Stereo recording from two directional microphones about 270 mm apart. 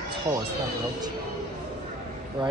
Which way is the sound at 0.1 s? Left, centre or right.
Centre.